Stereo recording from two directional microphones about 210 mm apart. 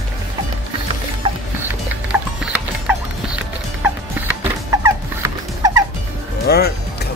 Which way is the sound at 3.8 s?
10° right (ahead or behind).